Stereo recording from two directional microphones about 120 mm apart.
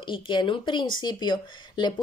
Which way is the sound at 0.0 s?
45° left (ahead or behind).